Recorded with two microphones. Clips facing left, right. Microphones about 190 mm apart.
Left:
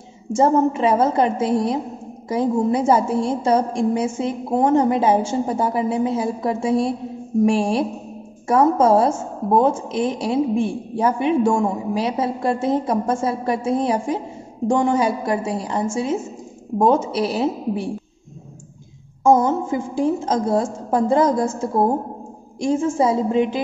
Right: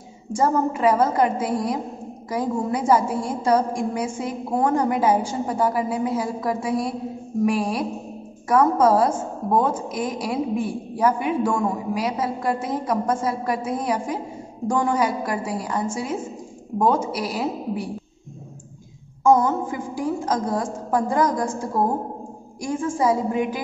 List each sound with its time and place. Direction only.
0.3 s a woman's voice: 25° left (ahead or behind)
19.2 s a woman's voice: 25° left (ahead or behind)